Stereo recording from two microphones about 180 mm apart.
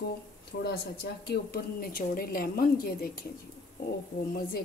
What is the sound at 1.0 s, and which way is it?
A woman's voice, 65° left (ahead or behind).